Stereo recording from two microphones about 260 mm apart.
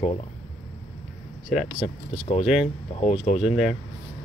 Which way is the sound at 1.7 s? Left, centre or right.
Left.